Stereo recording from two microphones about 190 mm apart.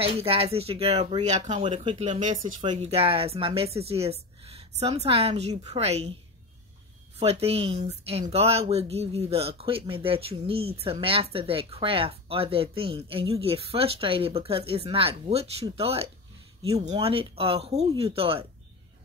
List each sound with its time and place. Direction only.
0.0 s speech: 30° right (ahead or behind)
7.2 s speech: 30° right (ahead or behind)